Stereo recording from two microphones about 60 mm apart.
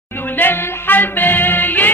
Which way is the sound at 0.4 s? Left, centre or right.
Left.